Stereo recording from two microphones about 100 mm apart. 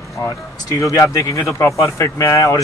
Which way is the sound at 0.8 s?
30° left (ahead or behind).